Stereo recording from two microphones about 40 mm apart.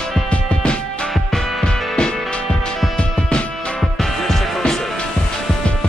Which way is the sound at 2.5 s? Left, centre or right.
Centre.